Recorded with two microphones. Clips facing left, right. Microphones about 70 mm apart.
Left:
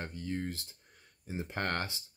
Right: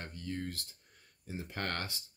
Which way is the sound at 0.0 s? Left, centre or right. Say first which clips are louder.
Left 3 dB; left.